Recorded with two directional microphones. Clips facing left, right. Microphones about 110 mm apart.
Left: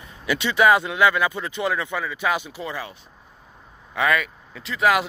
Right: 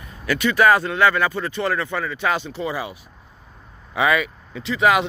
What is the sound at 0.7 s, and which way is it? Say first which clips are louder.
Speech: left 1 dB; 15° left (ahead or behind).